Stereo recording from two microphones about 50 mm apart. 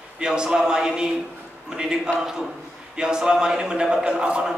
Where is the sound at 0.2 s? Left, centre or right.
Centre.